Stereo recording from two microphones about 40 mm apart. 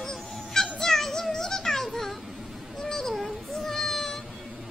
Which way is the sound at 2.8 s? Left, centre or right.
Centre.